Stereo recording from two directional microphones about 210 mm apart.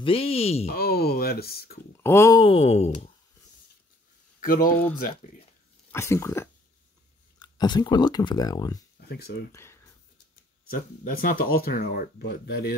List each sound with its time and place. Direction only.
0.0 s speech: 25° left (ahead or behind)
0.7 s speech: 50° left (ahead or behind)
2.0 s speech: 15° left (ahead or behind); by 3.1 s 30° left (ahead or behind)
4.4 s speech: 40° left (ahead or behind)
5.9 s speech: 15° left (ahead or behind)
9.1 s speech: 50° left (ahead or behind)
9.5 s speech: 10° left (ahead or behind)
10.7 s speech: 45° left (ahead or behind)